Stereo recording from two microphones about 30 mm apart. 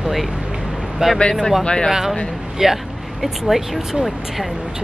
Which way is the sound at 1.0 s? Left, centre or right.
Right.